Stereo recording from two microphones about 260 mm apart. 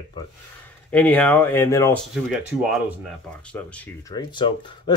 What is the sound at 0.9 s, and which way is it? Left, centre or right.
Speech, centre.